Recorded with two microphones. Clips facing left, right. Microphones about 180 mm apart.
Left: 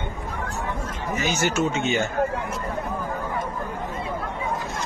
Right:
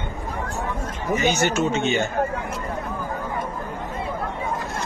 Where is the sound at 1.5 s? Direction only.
10° left (ahead or behind).